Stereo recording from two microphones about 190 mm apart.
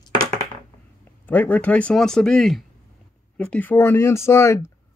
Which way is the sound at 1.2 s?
10° left (ahead or behind).